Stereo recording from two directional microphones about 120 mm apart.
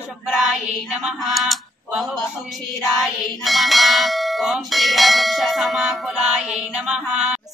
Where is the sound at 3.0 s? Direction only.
Centre (ahead or behind).